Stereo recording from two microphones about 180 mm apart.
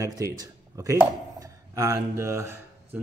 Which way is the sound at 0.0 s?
15° right (ahead or behind).